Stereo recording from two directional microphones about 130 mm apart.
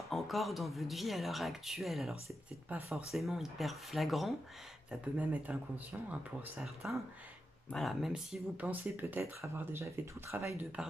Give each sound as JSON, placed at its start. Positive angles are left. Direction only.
{"t": 0.1, "sound": "speech", "side_deg": 0}
{"t": 2.7, "sound": "speech", "side_deg": -10}
{"t": 10.8, "sound": "speech", "side_deg": -5}